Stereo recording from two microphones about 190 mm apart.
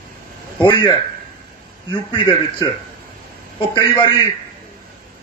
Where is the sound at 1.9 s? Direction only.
25° left (ahead or behind).